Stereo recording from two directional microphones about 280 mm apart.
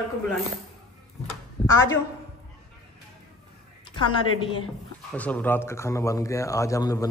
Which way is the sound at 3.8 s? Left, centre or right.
Centre.